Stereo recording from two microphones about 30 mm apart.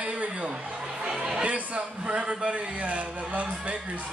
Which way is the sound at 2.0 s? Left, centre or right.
Right.